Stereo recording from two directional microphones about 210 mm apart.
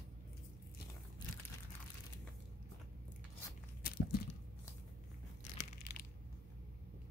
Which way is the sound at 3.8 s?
45° left (ahead or behind).